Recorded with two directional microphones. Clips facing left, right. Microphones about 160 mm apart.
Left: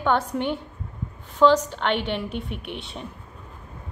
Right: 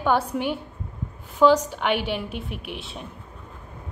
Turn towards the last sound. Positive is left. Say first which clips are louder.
# left 1 dB
turn(degrees=0)  # may be behind; listen again after turning